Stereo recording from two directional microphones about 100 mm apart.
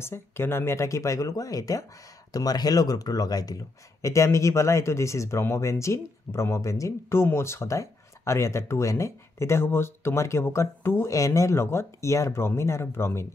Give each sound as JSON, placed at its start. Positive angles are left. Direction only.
{"t": 0.0, "sound": "speech", "side_deg": 25}